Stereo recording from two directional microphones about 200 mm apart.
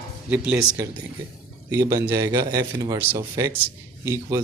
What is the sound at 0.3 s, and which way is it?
Speech, 5° right (ahead or behind).